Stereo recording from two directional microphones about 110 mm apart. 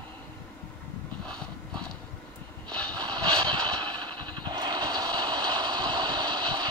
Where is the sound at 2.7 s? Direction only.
10° left (ahead or behind).